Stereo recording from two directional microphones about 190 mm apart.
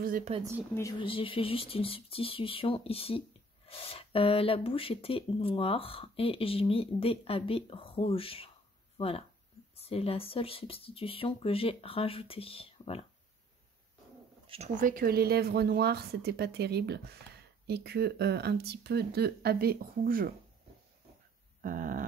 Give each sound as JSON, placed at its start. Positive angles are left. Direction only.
{"t": 0.0, "sound": "speech", "side_deg": -45}
{"t": 0.9, "sound": "speech", "side_deg": 30}
{"t": 14.8, "sound": "speech", "side_deg": -50}
{"t": 21.5, "sound": "dog", "side_deg": -45}